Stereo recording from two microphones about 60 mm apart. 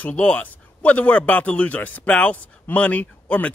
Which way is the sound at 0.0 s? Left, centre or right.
Left.